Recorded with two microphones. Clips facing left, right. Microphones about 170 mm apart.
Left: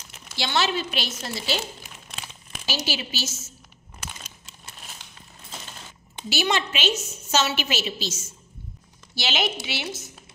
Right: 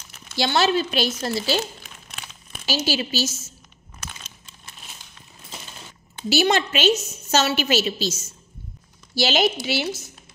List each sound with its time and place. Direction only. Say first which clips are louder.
0.4 s a woman's voice: right 5 dB; 40° right (ahead or behind)
2.9 s a woman's voice: right 6 dB; 40° right (ahead or behind)
6.2 s a woman's voice: right 5 dB; 40° right (ahead or behind)